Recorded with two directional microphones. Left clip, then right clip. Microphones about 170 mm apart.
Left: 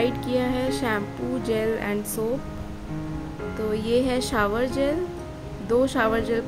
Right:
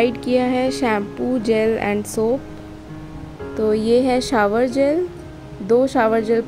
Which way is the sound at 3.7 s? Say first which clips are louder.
Right 6 dB; 20° right (ahead or behind).